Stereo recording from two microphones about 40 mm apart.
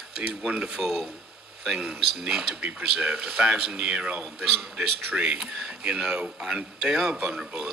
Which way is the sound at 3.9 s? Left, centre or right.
Right.